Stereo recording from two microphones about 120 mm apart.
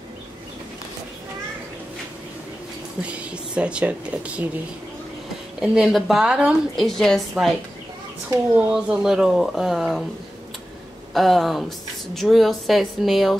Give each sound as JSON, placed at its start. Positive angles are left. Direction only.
{"t": 3.0, "sound": "speech", "side_deg": -10}
{"t": 5.6, "sound": "a woman's voice", "side_deg": -5}
{"t": 6.7, "sound": "a woman's voice", "side_deg": 0}
{"t": 8.5, "sound": "a woman's voice", "side_deg": -5}
{"t": 11.1, "sound": "a woman's voice", "side_deg": 0}